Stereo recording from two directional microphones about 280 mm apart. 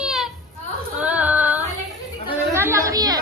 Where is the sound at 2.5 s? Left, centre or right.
Centre.